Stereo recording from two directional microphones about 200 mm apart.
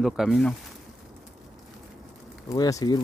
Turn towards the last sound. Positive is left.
turn(degrees=20)  # may be behind; listen again after turning